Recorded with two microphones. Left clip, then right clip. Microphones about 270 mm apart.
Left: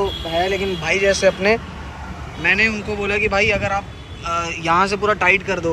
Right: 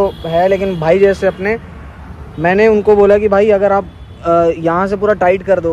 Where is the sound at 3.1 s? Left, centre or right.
Centre.